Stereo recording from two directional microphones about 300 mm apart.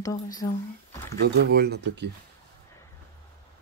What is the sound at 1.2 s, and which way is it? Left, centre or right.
Speech, right.